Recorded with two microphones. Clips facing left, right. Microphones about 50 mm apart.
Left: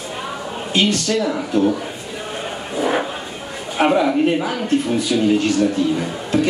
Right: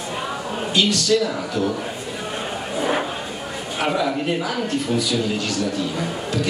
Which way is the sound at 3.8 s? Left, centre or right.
Left.